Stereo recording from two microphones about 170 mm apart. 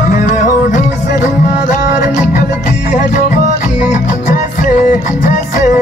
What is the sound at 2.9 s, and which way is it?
Music, 45° left (ahead or behind).